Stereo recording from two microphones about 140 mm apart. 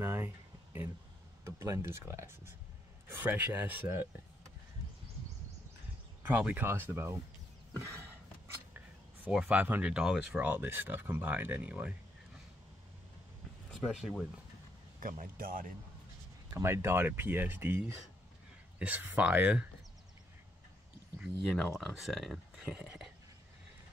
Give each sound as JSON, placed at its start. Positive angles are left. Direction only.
{"t": 0.0, "sound": "a sound", "side_deg": -15}
{"t": 1.4, "sound": "speech", "side_deg": -20}
{"t": 6.2, "sound": "speech", "side_deg": -10}
{"t": 8.7, "sound": "a sound", "side_deg": -15}
{"t": 9.4, "sound": "speech", "side_deg": -10}
{"t": 13.7, "sound": "speech", "side_deg": 0}
{"t": 15.0, "sound": "speech", "side_deg": -75}
{"t": 16.5, "sound": "speech", "side_deg": -20}
{"t": 21.2, "sound": "speech", "side_deg": 0}